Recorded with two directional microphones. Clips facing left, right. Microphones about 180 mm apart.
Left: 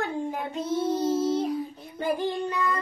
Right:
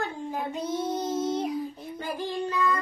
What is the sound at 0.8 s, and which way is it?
Child singing, 10° left (ahead or behind).